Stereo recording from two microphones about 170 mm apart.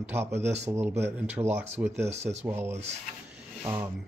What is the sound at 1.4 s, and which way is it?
Speech, 20° right (ahead or behind).